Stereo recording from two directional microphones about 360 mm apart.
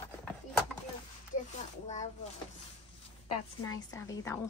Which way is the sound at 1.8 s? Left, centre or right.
Centre.